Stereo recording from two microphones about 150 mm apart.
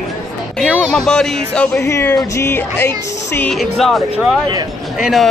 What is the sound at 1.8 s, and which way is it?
Speech, 20° left (ahead or behind).